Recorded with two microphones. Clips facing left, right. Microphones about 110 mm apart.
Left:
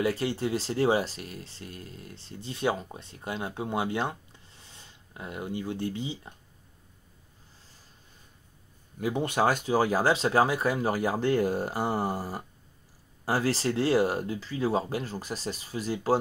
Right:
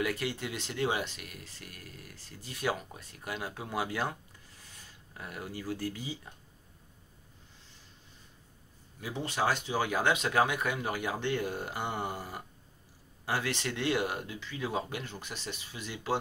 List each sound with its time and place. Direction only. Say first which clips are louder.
0.0 s speech: left 6 dB; 30° left (ahead or behind)
9.0 s speech: left 6 dB; 55° left (ahead or behind)